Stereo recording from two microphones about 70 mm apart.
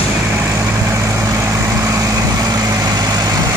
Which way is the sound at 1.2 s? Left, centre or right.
Right.